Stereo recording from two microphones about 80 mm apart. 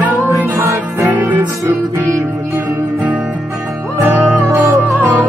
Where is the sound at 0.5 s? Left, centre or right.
Right.